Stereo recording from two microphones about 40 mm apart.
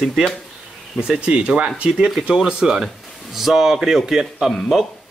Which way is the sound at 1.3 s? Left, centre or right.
Right.